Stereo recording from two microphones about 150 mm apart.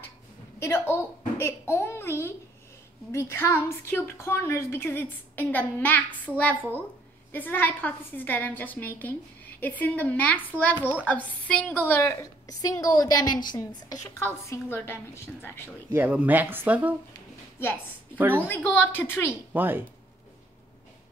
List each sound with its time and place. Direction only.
0.6 s a woman's voice: 15° left (ahead or behind)
10.8 s speech: 10° right (ahead or behind)
11.1 s a woman's voice: 10° left (ahead or behind)
12.0 s a woman's voice: 20° left (ahead or behind)
14.5 s a woman's voice: 15° left (ahead or behind)
15.9 s speech: 10° right (ahead or behind)
18.1 s speech: 10° right (ahead or behind)
18.5 s a woman's voice: 10° left (ahead or behind)
19.5 s speech: 15° right (ahead or behind)